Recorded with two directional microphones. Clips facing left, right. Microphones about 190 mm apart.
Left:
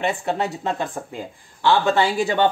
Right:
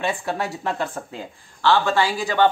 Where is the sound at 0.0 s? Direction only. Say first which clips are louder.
Left 2 dB; 20° left (ahead or behind).